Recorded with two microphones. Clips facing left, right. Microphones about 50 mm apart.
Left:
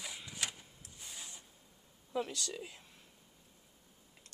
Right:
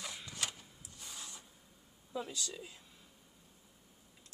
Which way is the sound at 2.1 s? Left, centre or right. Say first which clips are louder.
Left 3 dB; left.